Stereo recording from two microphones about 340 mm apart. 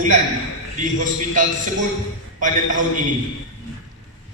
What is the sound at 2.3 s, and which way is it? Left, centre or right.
Speech, right.